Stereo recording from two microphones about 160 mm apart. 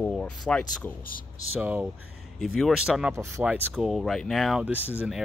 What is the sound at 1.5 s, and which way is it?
Speech, 10° right (ahead or behind).